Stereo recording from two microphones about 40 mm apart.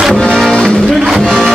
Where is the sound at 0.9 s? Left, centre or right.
Centre.